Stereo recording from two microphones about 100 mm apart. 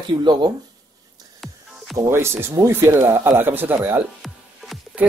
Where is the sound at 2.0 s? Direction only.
25° right (ahead or behind).